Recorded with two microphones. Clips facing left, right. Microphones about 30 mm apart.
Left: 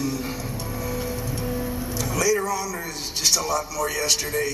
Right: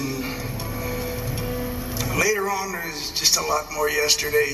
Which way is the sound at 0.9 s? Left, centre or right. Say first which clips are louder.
Left 1 dB; centre.